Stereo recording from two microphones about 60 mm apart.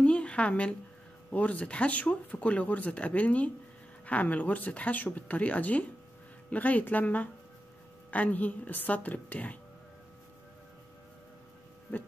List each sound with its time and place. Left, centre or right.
0.0 s a sound: centre
1.3 s speech: left
11.9 s speech: left